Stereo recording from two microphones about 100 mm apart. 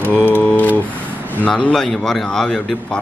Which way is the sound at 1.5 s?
5° left (ahead or behind).